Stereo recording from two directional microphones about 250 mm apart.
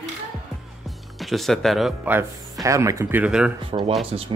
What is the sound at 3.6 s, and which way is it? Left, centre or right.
Speech, right.